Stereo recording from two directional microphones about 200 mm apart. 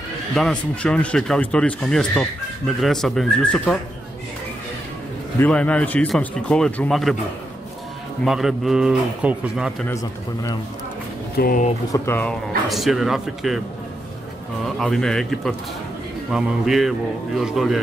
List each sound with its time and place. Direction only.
0.3 s speech: 5° left (ahead or behind)
5.4 s speech: 5° left (ahead or behind)
8.2 s speech: centre (ahead or behind)
11.3 s speech: 50° left (ahead or behind)
11.9 s speech: 10° left (ahead or behind)
14.8 s speech: centre (ahead or behind)